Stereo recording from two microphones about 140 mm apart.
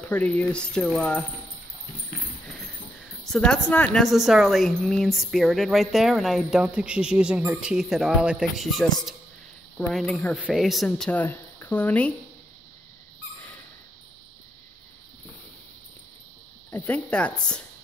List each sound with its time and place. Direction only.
0.0 s speech: 10° left (ahead or behind)
3.3 s speech: 5° left (ahead or behind)
4.0 s speech: centre (ahead or behind)
16.7 s speech: 10° left (ahead or behind)